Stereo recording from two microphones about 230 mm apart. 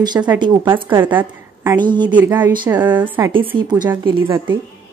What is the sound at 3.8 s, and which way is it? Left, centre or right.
Speech, centre.